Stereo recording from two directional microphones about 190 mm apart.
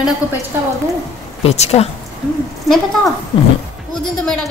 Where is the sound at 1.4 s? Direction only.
35° left (ahead or behind).